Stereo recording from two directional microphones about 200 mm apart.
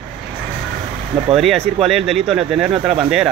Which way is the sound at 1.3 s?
Centre (ahead or behind).